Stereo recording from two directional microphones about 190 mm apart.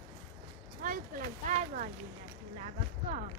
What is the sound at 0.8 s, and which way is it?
Speech, 45° right (ahead or behind).